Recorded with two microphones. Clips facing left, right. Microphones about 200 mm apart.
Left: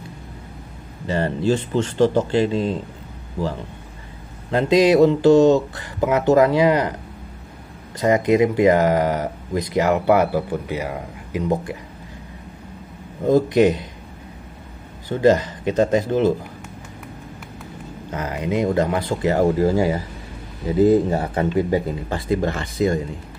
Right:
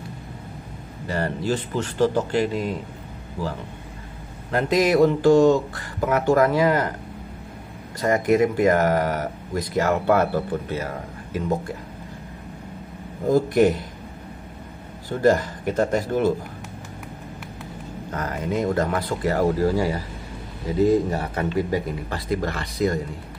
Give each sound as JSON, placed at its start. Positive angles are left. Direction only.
{"t": 1.0, "sound": "speech", "side_deg": 25}
{"t": 4.5, "sound": "speech", "side_deg": 20}
{"t": 8.0, "sound": "speech", "side_deg": 20}
{"t": 13.3, "sound": "speech", "side_deg": 20}
{"t": 15.0, "sound": "speech", "side_deg": 20}
{"t": 18.1, "sound": "speech", "side_deg": 20}